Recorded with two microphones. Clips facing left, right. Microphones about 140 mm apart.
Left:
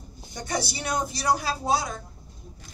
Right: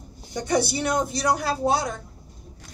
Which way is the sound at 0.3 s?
55° right (ahead or behind).